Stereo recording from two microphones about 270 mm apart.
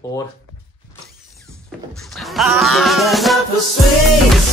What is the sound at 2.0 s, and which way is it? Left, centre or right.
Music, centre.